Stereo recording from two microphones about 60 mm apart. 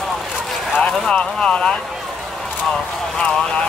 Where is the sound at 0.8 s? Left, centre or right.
Centre.